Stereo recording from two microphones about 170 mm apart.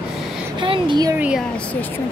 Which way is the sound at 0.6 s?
30° right (ahead or behind).